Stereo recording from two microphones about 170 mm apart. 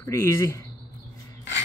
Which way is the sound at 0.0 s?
15° left (ahead or behind).